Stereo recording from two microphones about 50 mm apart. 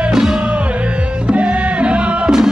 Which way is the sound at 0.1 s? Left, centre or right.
Centre.